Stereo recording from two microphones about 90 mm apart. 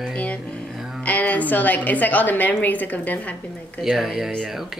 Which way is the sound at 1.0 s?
15° left (ahead or behind).